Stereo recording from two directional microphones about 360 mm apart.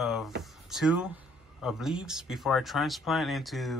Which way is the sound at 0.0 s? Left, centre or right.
Centre.